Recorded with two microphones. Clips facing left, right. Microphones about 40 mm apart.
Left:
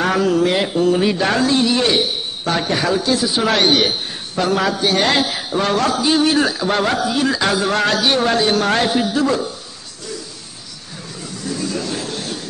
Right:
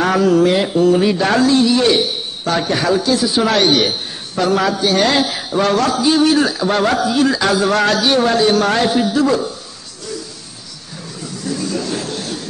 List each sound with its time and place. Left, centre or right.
0.0 s a man's voice: centre
1.4 s speech: left
2.0 s a sound: centre
2.7 s a man's voice: centre
3.0 s a man's voice: left
6.6 s a man's voice: centre
11.7 s a sound: centre